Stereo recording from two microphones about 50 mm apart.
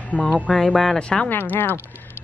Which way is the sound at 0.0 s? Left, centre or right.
Left.